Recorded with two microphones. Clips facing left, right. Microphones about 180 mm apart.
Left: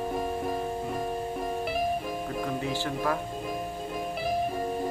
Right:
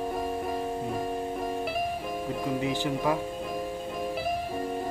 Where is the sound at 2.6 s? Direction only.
15° right (ahead or behind).